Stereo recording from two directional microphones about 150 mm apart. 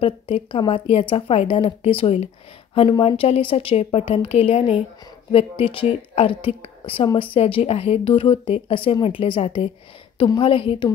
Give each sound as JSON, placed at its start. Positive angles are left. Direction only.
{"t": 0.0, "sound": "speech", "side_deg": 35}